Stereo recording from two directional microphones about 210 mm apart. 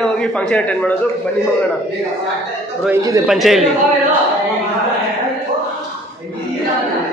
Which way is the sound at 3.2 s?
Centre (ahead or behind).